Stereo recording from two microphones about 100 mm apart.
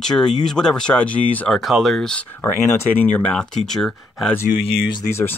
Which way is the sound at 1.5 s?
Centre (ahead or behind).